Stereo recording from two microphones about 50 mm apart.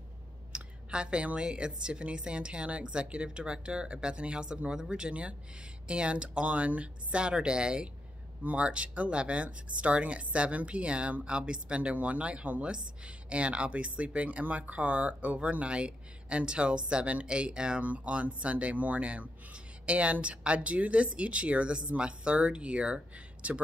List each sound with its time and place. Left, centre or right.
0.5 s speech: right